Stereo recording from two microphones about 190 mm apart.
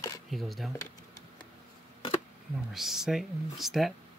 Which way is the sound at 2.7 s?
Centre (ahead or behind).